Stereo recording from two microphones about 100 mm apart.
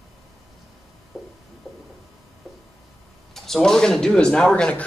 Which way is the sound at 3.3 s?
5° left (ahead or behind).